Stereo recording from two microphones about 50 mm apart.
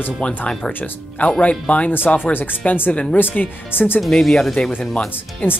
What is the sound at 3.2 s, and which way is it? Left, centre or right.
Speech, left.